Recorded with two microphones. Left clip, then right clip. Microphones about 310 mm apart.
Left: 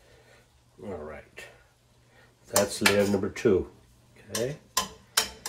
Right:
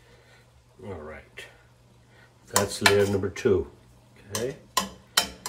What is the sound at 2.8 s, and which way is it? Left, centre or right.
Speech, centre.